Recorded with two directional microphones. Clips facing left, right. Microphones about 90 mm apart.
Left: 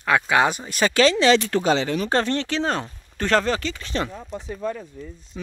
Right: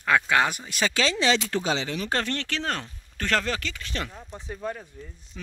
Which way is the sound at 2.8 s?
35° left (ahead or behind).